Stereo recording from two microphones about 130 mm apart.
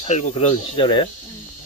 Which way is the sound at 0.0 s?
55° left (ahead or behind).